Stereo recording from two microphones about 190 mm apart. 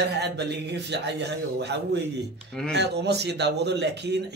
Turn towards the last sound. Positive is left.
turn(degrees=-65)  # may be behind; listen again after turning